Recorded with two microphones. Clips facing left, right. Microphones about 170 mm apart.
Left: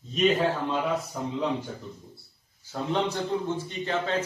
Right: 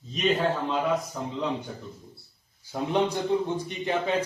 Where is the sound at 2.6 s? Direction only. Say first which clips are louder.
Right 2 dB; 15° right (ahead or behind).